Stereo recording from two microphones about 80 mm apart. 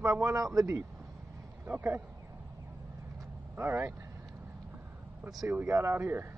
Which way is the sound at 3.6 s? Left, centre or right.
Right.